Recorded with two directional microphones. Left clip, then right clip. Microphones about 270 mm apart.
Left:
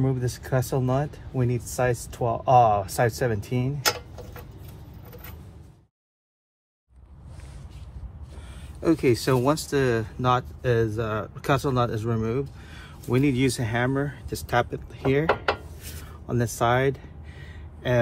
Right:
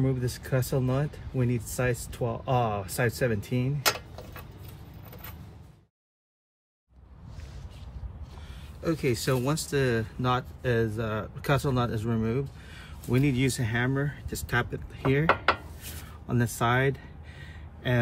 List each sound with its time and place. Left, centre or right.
0.0 s speech: centre
8.8 s speech: left
16.3 s a sound: centre